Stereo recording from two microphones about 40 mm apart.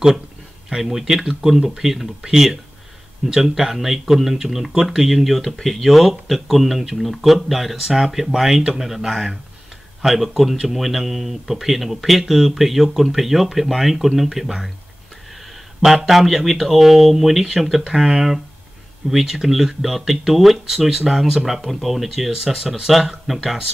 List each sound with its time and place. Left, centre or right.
0.7 s speech: centre
3.5 s speech: centre
15.8 s speech: centre
18.0 s speech: centre